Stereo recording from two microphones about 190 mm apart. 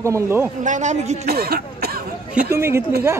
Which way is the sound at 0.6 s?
40° right (ahead or behind).